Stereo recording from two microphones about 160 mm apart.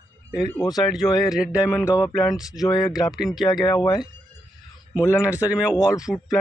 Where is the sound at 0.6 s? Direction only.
25° left (ahead or behind).